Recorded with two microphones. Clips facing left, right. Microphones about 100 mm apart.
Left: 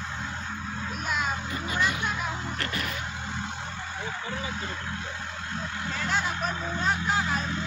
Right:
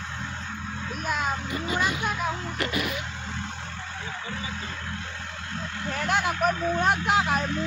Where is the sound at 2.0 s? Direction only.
5° right (ahead or behind).